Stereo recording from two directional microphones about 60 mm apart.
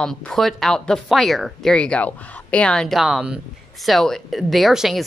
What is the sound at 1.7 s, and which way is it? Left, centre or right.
A woman's voice, centre.